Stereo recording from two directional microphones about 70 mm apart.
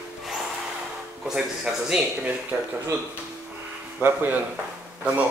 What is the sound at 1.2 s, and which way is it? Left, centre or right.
Speech, centre.